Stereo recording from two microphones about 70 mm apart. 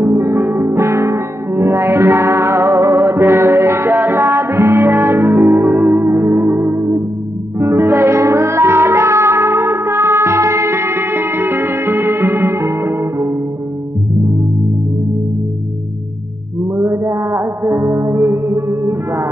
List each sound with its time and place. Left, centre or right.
0.0 s music: right
3.9 s music: right
16.7 s music: right